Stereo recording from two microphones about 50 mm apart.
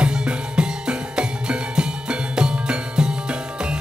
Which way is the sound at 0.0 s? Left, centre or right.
Centre.